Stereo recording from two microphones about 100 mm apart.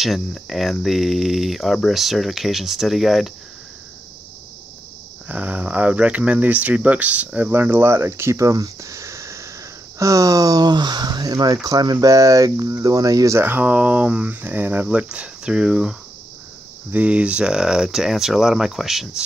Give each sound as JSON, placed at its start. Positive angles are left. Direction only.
{"t": 0.0, "sound": "speech", "side_deg": 0}
{"t": 5.3, "sound": "speech", "side_deg": -15}
{"t": 13.5, "sound": "speech", "side_deg": -15}